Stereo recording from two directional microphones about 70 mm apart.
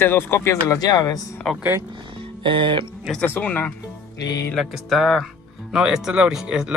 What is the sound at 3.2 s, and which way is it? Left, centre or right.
Speech, left.